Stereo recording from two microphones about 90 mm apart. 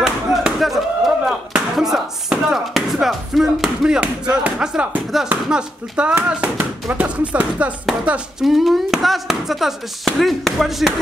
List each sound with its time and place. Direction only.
0.0 s a sound: 5° right (ahead or behind)
5.3 s speech: 10° right (ahead or behind)
8.5 s speech: 5° right (ahead or behind)